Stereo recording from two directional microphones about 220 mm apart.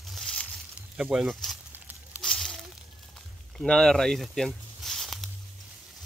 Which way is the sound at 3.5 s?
5° left (ahead or behind).